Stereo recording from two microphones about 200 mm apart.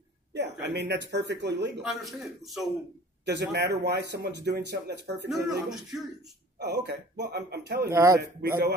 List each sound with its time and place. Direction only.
0.3 s speech: 60° right (ahead or behind)
1.8 s a man's voice: centre (ahead or behind)
3.3 s speech: 55° right (ahead or behind)
5.7 s a man's voice: centre (ahead or behind)
6.6 s speech: 55° right (ahead or behind)
7.9 s speech: 15° right (ahead or behind)